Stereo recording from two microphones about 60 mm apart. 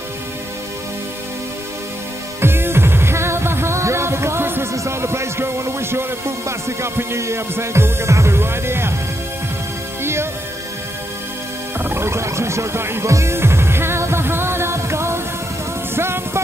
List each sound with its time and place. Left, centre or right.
2.4 s music: right
4.7 s music: right
11.8 s speech: right
13.1 s music: right